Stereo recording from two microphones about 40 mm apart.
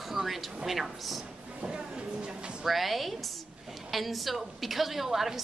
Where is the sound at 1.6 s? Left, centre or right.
Right.